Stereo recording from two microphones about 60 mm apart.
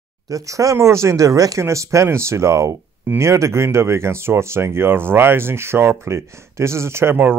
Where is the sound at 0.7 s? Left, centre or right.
Right.